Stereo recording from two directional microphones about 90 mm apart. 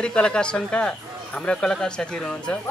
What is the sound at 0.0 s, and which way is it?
Speech, 10° left (ahead or behind).